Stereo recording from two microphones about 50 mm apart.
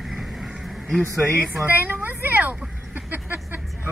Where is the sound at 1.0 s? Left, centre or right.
Right.